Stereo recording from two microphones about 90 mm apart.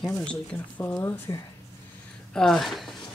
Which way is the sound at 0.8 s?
20° left (ahead or behind).